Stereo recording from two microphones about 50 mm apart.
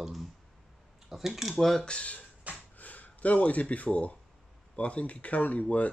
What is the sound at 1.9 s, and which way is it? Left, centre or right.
Speech, left.